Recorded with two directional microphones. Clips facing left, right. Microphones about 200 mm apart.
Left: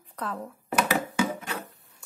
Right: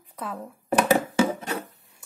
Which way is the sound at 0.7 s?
40° right (ahead or behind).